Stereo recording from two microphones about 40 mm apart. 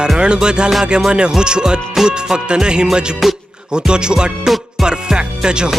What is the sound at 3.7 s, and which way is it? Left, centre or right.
Music, right.